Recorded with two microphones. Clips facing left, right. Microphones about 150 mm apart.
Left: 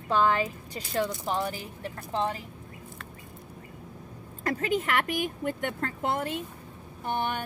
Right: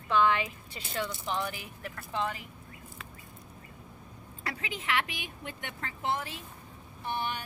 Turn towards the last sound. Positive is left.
turn(degrees=50)  # may be behind; listen again after turning